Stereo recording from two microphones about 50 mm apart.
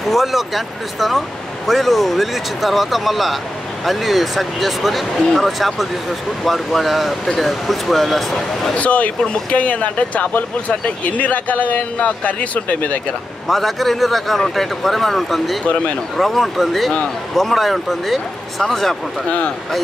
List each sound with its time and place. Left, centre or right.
0.0 s a man's voice: centre
8.7 s speech: left
13.5 s a man's voice: centre